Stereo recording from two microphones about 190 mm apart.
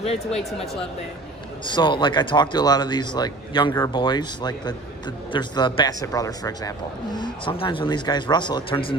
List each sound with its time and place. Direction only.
0.0 s speech: 35° left (ahead or behind)
1.7 s speech: 25° left (ahead or behind)